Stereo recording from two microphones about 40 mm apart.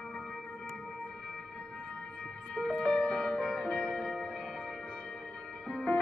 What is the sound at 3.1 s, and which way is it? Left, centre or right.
Music, centre.